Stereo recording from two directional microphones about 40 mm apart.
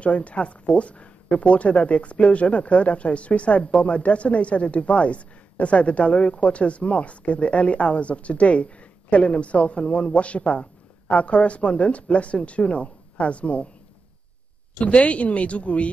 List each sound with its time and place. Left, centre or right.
0.0 s speech: left
14.8 s speech: left